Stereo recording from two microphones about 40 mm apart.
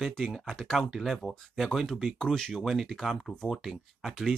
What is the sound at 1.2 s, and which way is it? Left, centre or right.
Speech, centre.